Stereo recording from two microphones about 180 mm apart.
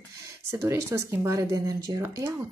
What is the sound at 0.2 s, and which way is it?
Speech, 15° right (ahead or behind).